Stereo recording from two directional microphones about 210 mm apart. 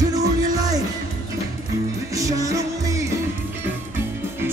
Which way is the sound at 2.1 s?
15° right (ahead or behind).